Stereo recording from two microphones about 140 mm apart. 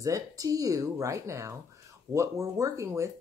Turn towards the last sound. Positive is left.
turn(degrees=-20)  # may be behind; listen again after turning